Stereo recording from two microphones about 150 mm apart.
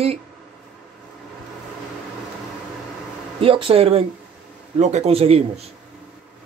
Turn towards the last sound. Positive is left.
turn(degrees=-40)  # may be behind; listen again after turning